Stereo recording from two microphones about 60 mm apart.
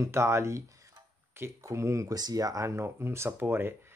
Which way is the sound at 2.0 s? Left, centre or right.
Right.